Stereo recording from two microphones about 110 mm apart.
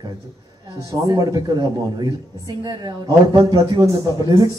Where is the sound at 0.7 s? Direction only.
35° right (ahead or behind).